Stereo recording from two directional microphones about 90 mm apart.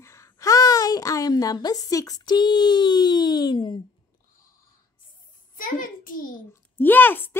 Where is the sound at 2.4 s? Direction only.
60° left (ahead or behind).